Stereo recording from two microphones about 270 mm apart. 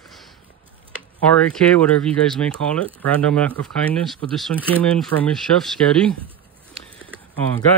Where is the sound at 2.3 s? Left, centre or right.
Centre.